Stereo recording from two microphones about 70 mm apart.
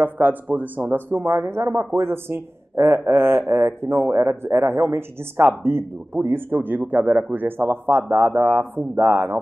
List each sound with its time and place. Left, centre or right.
0.0 s speech: right